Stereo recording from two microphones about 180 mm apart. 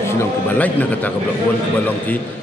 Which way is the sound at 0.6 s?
10° left (ahead or behind).